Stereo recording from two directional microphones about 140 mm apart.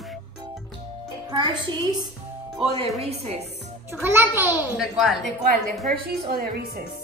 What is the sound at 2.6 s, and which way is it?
Music, 50° right (ahead or behind).